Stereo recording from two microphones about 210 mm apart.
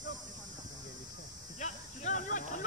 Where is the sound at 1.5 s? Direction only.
35° left (ahead or behind).